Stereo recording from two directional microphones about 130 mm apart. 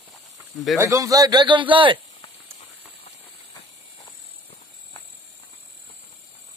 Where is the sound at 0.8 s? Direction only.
25° right (ahead or behind); by 2.0 s 40° right (ahead or behind).